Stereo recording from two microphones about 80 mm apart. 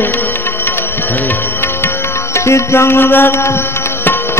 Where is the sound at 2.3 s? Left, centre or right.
Left.